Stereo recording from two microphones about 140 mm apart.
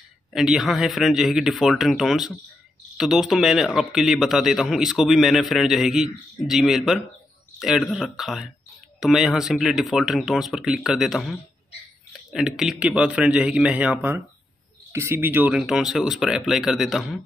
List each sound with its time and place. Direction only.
0.3 s a man's voice: 5° right (ahead or behind)
15.6 s a man's voice: centre (ahead or behind)